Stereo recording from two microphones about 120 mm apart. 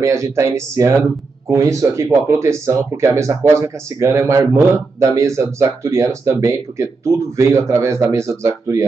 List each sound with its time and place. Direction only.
0.0 s speech: 25° right (ahead or behind)